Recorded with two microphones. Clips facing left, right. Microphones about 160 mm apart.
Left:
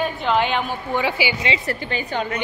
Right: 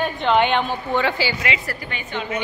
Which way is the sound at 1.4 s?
25° left (ahead or behind).